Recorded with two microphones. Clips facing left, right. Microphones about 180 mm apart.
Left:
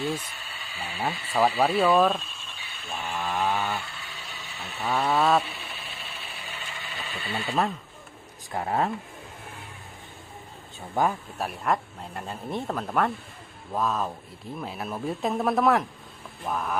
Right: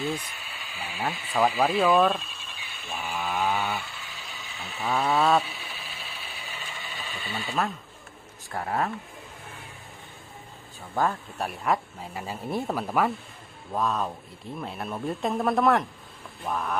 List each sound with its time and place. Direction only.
0.0 s a sound: centre (ahead or behind)
8.5 s speech: 20° left (ahead or behind)
11.0 s speech: 20° left (ahead or behind)
11.3 s speech: centre (ahead or behind)